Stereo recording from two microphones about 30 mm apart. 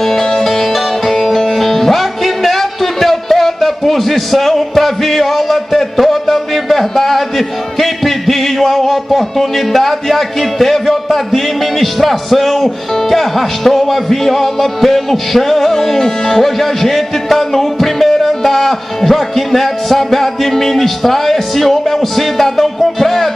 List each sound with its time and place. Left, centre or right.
0.0 s music: centre
5.8 s a sound: centre
7.0 s music: centre
8.5 s a man's voice: centre
16.4 s music: centre